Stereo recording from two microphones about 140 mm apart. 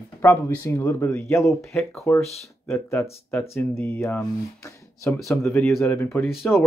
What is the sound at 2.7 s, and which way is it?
Speech, 15° left (ahead or behind).